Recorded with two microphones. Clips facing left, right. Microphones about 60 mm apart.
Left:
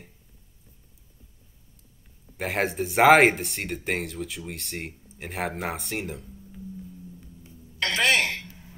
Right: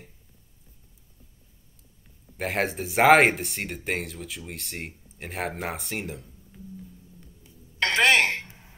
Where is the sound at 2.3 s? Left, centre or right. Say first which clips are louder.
Even; centre.